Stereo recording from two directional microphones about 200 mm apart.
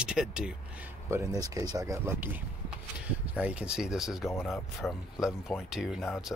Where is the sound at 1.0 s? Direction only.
15° right (ahead or behind).